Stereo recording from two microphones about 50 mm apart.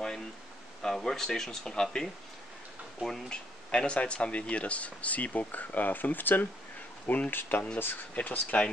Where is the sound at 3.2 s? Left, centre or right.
Centre.